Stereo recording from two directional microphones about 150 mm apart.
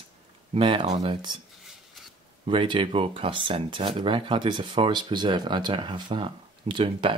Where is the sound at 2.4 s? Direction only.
35° right (ahead or behind).